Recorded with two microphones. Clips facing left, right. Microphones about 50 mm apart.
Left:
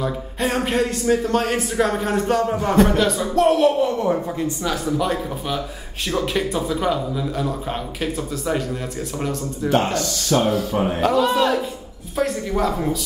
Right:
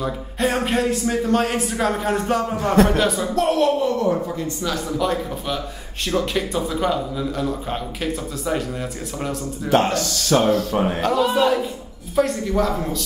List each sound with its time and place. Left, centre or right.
0.0 s a man's voice: centre
9.7 s speech: right
10.5 s a man's voice: centre